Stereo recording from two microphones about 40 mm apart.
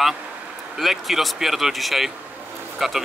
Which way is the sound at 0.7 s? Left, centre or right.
Centre.